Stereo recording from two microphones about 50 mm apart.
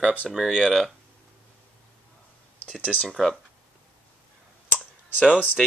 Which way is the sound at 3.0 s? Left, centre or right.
Centre.